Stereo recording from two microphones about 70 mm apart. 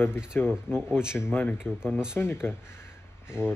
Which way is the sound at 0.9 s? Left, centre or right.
Centre.